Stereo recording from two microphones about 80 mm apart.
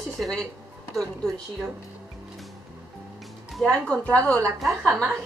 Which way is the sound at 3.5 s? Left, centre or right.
Centre.